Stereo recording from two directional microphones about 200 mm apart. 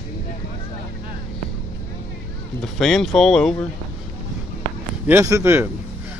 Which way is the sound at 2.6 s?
Centre (ahead or behind).